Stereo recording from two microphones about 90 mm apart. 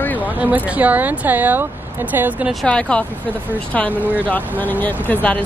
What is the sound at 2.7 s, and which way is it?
Speech, 10° left (ahead or behind).